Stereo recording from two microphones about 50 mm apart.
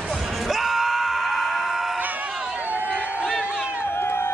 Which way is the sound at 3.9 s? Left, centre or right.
Left.